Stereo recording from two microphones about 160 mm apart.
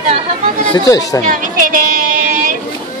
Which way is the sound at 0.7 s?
20° left (ahead or behind).